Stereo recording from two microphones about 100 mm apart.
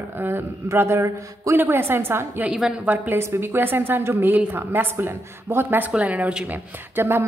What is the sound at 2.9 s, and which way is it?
A woman's voice, 25° right (ahead or behind).